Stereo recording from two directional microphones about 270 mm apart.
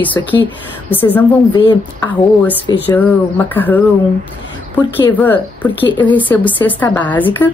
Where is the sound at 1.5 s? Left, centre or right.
Centre.